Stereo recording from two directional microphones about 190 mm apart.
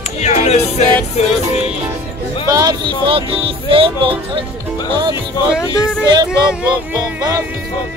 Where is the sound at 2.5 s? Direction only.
20° right (ahead or behind).